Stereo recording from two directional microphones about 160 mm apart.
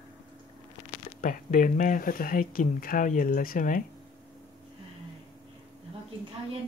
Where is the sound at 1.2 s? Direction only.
55° left (ahead or behind).